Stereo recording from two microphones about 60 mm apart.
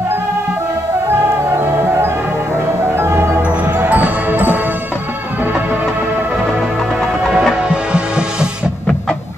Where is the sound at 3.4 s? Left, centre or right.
Right.